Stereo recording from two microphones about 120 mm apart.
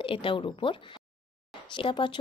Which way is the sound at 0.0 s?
45° left (ahead or behind).